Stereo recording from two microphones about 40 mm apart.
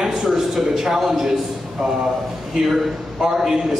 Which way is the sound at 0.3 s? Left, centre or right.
Centre.